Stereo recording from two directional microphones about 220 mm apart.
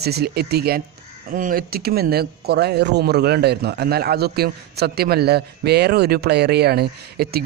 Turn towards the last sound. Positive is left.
turn(degrees=-45)  # may be behind; listen again after turning